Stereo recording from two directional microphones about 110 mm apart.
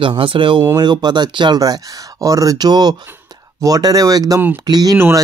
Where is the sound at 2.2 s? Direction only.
30° right (ahead or behind).